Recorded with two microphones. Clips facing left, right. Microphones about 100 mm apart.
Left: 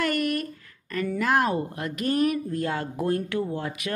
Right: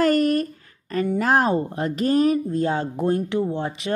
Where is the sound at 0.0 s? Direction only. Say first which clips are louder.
Right 7 dB; 35° right (ahead or behind).